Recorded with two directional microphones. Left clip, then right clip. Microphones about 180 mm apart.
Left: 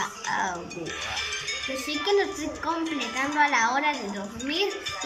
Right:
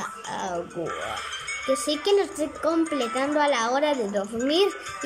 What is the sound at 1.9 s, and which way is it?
Speech, 30° right (ahead or behind).